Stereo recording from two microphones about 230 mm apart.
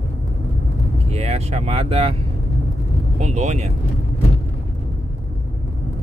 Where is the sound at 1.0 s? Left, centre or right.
Right.